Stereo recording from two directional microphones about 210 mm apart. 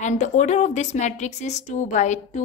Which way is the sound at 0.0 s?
35° left (ahead or behind).